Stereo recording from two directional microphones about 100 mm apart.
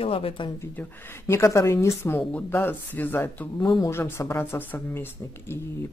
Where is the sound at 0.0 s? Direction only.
70° left (ahead or behind).